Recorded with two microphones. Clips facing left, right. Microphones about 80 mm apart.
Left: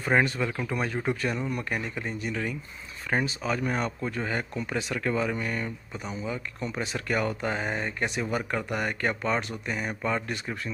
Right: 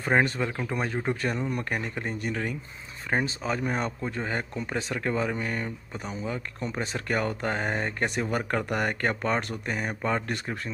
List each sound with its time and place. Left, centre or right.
0.0 s speech: right
1.5 s speech: right
3.1 s speech: right